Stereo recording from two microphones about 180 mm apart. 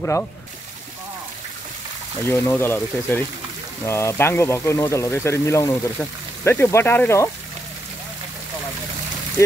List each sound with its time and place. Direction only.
0.0 s speech: 10° left (ahead or behind)
2.3 s speech: 15° left (ahead or behind)